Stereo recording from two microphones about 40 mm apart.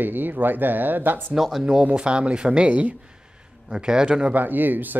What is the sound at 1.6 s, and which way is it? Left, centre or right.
Speech, right.